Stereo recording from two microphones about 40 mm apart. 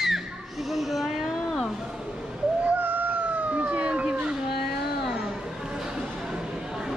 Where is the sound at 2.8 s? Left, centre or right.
Right.